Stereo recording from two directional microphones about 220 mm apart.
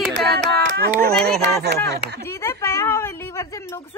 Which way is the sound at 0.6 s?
50° right (ahead or behind).